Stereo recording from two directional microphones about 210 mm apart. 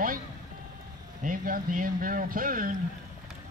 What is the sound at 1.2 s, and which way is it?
Speech, 40° right (ahead or behind).